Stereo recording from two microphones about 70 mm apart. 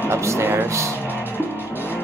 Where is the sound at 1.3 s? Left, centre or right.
Left.